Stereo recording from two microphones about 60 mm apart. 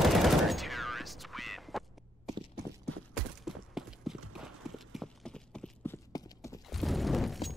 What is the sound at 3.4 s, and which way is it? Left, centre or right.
Clip-clop, centre.